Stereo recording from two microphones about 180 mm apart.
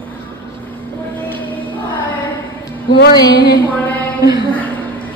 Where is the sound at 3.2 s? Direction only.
20° left (ahead or behind).